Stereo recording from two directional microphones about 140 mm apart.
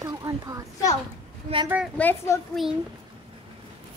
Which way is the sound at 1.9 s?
15° left (ahead or behind).